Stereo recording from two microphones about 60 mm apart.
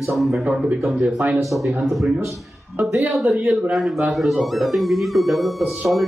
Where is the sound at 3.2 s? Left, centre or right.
Right.